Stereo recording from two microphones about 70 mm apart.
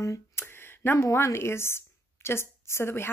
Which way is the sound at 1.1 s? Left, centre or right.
Left.